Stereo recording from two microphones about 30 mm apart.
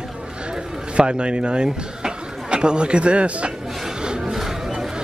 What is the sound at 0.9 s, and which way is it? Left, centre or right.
Speech, right.